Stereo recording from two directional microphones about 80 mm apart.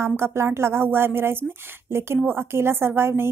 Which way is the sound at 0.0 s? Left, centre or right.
Right.